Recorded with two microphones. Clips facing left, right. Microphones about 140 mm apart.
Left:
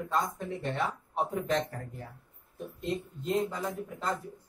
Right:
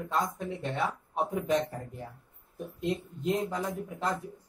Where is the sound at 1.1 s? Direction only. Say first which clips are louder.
Right 1 dB; 15° right (ahead or behind).